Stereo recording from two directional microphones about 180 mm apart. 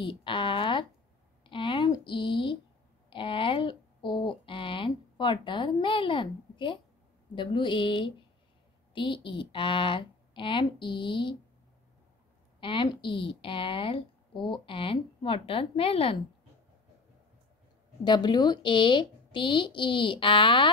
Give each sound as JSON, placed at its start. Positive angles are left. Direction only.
{"t": 0.0, "sound": "a sound", "side_deg": 25}
{"t": 3.1, "sound": "a woman's voice", "side_deg": 30}
{"t": 12.5, "sound": "a woman's voice", "side_deg": 30}
{"t": 18.0, "sound": "a woman's voice", "side_deg": 25}